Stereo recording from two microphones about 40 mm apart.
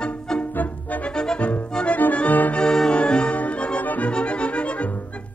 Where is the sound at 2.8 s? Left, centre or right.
Left.